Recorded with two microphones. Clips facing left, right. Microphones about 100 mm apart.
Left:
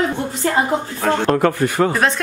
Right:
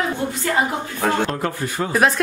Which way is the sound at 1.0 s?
5° right (ahead or behind).